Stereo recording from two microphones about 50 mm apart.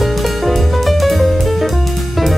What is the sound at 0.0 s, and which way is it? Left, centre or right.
Music, centre.